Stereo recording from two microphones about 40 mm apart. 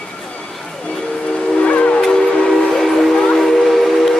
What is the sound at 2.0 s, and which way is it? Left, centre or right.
Train, centre.